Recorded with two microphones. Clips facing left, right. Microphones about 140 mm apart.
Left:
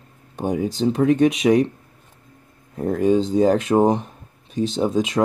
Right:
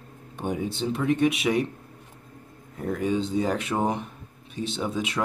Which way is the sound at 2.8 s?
35° left (ahead or behind).